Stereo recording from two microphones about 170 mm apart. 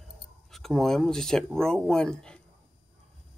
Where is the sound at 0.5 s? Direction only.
Centre (ahead or behind).